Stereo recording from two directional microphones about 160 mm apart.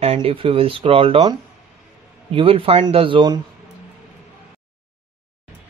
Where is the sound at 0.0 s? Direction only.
35° right (ahead or behind).